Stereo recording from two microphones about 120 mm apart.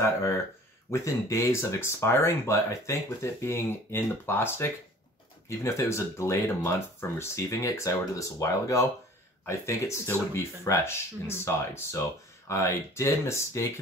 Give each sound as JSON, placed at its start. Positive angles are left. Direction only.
{"t": 0.0, "sound": "speech", "side_deg": 25}